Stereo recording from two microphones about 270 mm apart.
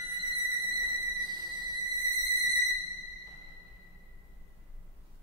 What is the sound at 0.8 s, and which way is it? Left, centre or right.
Squeal, centre.